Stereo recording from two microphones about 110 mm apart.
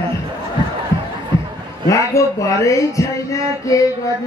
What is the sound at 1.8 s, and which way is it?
Speech, 30° left (ahead or behind).